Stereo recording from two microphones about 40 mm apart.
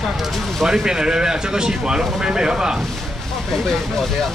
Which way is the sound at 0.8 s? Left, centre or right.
Centre.